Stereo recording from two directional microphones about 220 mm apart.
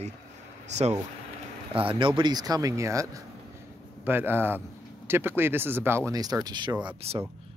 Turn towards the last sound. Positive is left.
turn(degrees=-30)  # may be behind; listen again after turning